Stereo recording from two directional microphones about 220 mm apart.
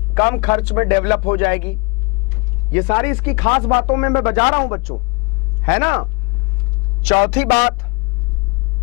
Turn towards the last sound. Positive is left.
turn(degrees=10)  # may be behind; listen again after turning